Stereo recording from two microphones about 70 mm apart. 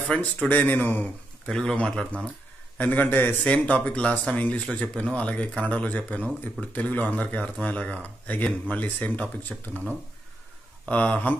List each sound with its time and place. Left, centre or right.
0.1 s speech: centre
1.4 s speech: centre
2.8 s speech: left